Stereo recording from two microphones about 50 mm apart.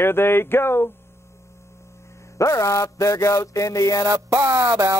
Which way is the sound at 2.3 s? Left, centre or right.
Left.